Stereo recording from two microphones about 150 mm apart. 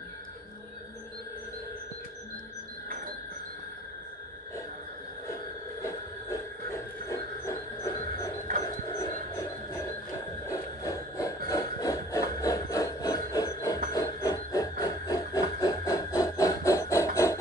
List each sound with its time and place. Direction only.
7.1 s train: 20° left (ahead or behind)
8.9 s heart murmur: 20° left (ahead or behind)
10.5 s a sound: 20° left (ahead or behind)